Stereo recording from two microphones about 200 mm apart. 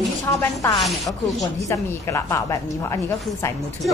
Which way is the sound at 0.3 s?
15° left (ahead or behind).